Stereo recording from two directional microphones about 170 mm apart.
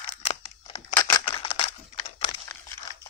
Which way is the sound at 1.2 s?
30° left (ahead or behind).